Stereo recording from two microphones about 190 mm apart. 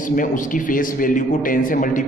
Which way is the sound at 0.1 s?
45° left (ahead or behind).